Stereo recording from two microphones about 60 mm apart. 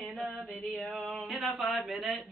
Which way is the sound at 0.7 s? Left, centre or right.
Centre.